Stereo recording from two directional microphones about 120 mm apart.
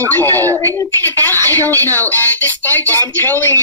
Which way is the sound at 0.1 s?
15° left (ahead or behind).